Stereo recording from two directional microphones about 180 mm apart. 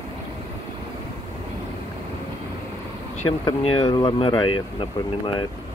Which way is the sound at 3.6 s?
30° left (ahead or behind).